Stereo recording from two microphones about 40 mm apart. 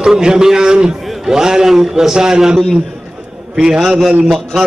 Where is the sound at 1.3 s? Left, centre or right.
Centre.